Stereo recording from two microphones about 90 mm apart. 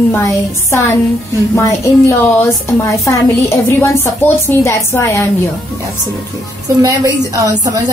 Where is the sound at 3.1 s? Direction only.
30° left (ahead or behind).